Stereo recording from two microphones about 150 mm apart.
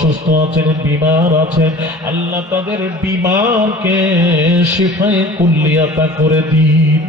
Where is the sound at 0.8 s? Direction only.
10° right (ahead or behind).